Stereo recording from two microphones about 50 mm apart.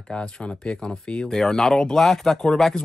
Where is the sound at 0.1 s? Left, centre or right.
Centre.